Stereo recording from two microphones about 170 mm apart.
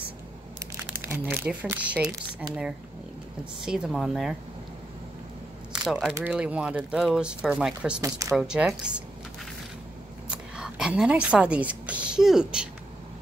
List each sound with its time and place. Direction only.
1.0 s speech: 10° right (ahead or behind)
5.7 s a sound: 5° right (ahead or behind)
6.1 s speech: 10° right (ahead or behind)
8.0 s speech: 20° right (ahead or behind)
8.4 s speech: 5° right (ahead or behind)
10.3 s speech: 5° right (ahead or behind)